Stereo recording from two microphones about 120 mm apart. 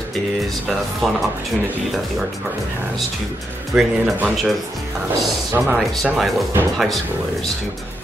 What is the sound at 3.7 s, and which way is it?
Speech, 5° right (ahead or behind).